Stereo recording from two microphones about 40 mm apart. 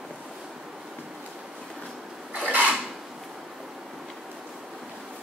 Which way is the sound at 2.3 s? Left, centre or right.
Right.